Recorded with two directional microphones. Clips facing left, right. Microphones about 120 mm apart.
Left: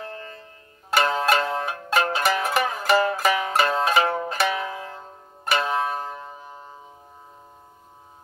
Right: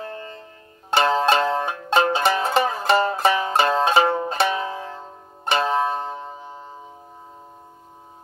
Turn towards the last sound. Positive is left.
turn(degrees=-25)  # may be behind; listen again after turning